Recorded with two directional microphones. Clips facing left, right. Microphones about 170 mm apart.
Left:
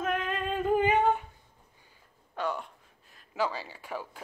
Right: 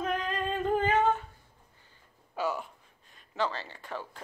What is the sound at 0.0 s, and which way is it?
Female singing, 5° left (ahead or behind).